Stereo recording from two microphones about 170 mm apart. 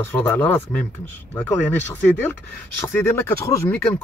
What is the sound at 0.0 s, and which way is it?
A man's voice, 15° left (ahead or behind).